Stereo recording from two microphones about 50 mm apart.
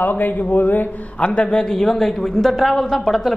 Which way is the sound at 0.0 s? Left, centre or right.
Left.